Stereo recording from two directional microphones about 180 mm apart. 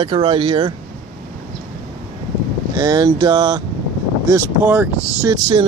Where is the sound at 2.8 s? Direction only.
20° right (ahead or behind).